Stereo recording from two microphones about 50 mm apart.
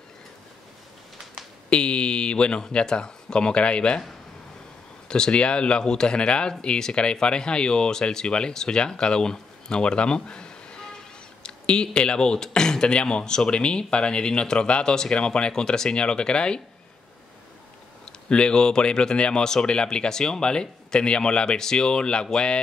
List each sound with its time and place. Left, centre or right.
1.7 s speech: centre
5.0 s speech: centre
18.0 s speech: centre